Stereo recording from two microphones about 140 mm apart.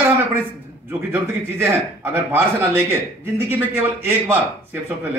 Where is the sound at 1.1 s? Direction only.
15° right (ahead or behind).